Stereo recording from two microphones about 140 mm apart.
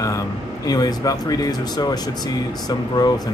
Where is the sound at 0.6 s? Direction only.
25° left (ahead or behind).